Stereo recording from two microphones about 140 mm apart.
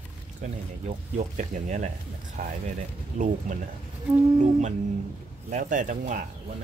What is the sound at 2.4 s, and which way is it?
Speech, 80° right.